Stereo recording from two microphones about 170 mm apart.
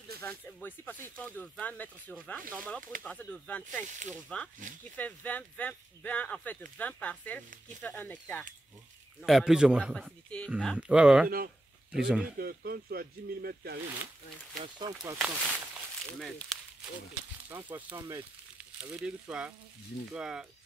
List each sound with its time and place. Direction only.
0.2 s a man's voice: 15° left (ahead or behind)
3.8 s speech: 45° right (ahead or behind)
4.3 s speech: 5° left (ahead or behind)
9.2 s a man's voice: centre (ahead or behind)
11.2 s speech: 55° right (ahead or behind)
11.9 s a man's voice: 5° right (ahead or behind)
12.4 s speech: 65° right (ahead or behind)
14.6 s speech: 25° right (ahead or behind)
15.1 s speech: centre (ahead or behind)
17.5 s speech: 10° right (ahead or behind)
18.8 s a man's voice: 5° right (ahead or behind)